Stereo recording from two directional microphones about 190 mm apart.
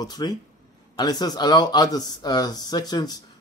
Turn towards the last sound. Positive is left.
turn(degrees=20)  # may be behind; listen again after turning